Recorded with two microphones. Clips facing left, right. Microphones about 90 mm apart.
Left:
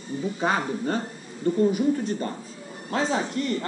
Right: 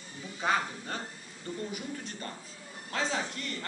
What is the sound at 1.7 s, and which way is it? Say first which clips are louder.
Speech: left 16 dB; 25° left (ahead or behind).